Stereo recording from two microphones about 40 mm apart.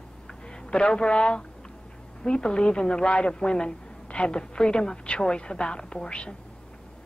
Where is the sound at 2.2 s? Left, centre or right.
Left.